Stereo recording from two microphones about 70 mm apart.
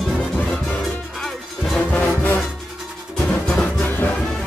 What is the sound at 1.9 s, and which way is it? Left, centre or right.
Music, left.